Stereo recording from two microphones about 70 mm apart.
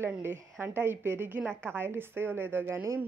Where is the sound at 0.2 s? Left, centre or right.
Right.